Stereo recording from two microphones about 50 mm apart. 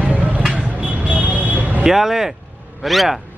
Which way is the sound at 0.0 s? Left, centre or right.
Right.